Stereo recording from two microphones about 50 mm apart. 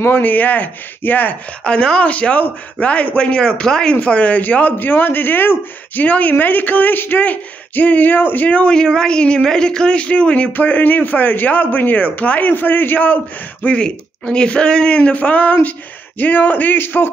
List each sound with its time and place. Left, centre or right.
0.2 s a man's voice: left
1.6 s speech: centre
4.0 s a man's voice: left
6.0 s a man's voice: left
8.5 s speech: left
8.7 s a man's voice: centre; by 13.2 s left
13.7 s a man's voice: centre; by 17.1 s left